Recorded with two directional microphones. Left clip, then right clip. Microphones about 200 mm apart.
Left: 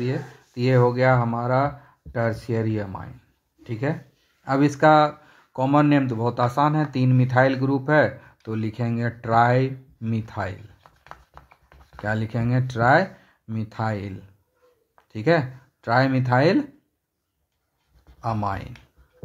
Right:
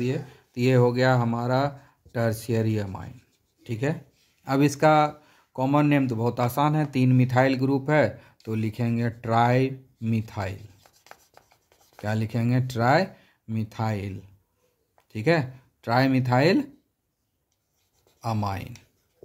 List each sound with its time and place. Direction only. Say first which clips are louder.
0.0 s speech: left 1 dB; 30° right (ahead or behind)
12.0 s speech: left 3 dB; 25° right (ahead or behind)
18.2 s speech: left 3 dB; 30° right (ahead or behind)